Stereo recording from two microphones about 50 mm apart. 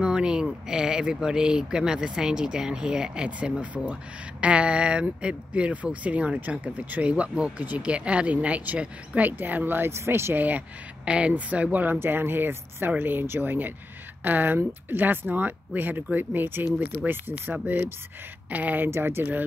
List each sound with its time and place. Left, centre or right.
0.0 s speech: centre; by 9.9 s right
9.9 s speech: right
10.3 s speech: right
11.1 s speech: right
12.0 s speech: right
18.9 s speech: right